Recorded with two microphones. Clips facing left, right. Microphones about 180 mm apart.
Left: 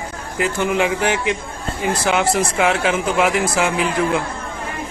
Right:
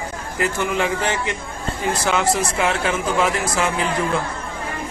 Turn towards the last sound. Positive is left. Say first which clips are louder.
# left 3 dB
turn(degrees=15)  # may be behind; listen again after turning